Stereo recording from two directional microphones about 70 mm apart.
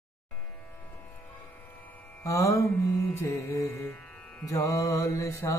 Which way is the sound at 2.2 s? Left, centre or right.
Left.